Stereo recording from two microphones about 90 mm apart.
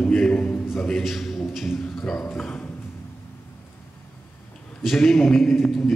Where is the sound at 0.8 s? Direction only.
Centre (ahead or behind).